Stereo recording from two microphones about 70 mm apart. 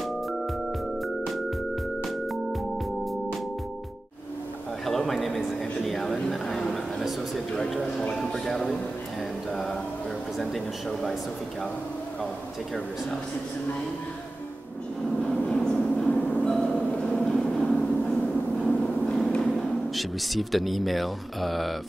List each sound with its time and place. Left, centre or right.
4.8 s a sound: centre
7.5 s speech: centre
9.5 s music: centre
10.4 s speech: centre
15.2 s train: centre
16.1 s music: centre
16.7 s a sound: centre
17.1 s train: centre
19.4 s speech: centre